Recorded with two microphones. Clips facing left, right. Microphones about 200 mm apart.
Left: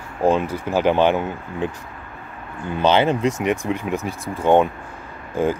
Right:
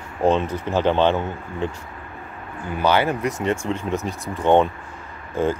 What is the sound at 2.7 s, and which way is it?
Speech, 25° left (ahead or behind).